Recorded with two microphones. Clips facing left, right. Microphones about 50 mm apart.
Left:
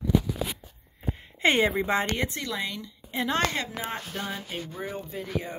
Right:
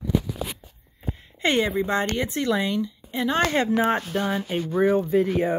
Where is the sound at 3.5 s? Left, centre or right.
Right.